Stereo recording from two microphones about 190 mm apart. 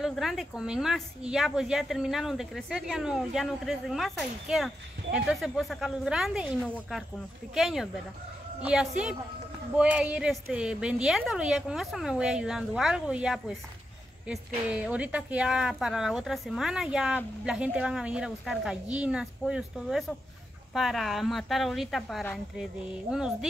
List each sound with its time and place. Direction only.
0.0 s speech: centre (ahead or behind)